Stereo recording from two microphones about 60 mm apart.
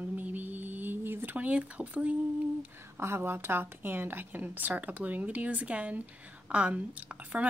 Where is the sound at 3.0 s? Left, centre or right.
Right.